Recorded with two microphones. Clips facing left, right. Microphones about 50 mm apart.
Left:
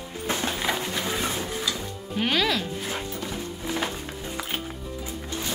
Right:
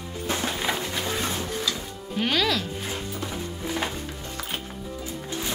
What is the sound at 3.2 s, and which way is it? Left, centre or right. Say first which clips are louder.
Music: even; centre.